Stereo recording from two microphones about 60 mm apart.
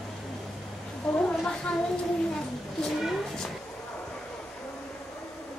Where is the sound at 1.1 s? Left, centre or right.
Centre.